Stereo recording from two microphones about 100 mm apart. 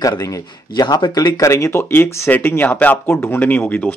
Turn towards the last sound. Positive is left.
turn(degrees=20)  # may be behind; listen again after turning